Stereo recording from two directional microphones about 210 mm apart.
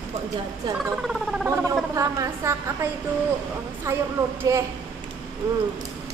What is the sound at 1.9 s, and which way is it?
Speech, 15° right (ahead or behind).